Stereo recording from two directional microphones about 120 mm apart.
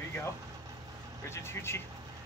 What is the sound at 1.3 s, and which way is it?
Speech, 20° left (ahead or behind).